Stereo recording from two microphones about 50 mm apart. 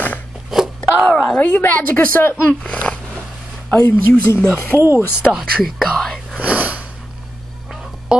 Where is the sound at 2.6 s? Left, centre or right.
Left.